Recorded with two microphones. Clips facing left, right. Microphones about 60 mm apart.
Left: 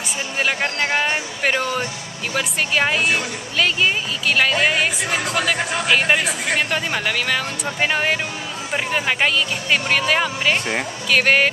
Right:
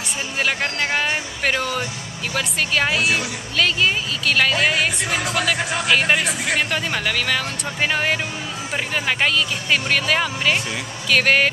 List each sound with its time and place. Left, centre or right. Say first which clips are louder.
0.4 s speech: left 1 dB; centre